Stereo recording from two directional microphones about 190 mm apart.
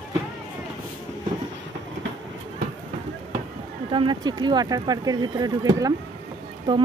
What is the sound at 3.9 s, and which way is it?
Speech, 25° right (ahead or behind).